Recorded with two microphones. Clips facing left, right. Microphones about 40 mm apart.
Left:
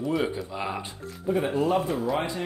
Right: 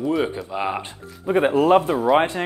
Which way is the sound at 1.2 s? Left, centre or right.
Right.